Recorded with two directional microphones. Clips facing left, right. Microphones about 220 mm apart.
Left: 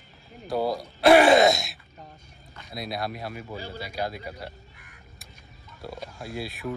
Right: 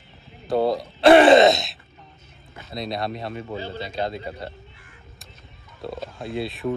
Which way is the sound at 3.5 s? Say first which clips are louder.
Right 5 dB; 25° right (ahead or behind).